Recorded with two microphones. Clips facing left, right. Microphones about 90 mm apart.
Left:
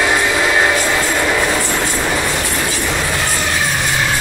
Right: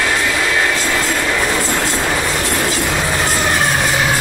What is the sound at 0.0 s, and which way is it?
Train, 20° left (ahead or behind).